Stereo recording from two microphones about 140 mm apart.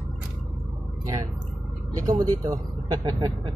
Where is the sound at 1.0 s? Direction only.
25° right (ahead or behind).